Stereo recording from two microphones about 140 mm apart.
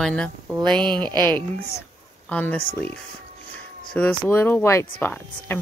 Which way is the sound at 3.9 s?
10° left (ahead or behind).